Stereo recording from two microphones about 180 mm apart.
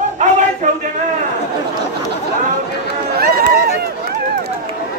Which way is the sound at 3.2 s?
60° right (ahead or behind).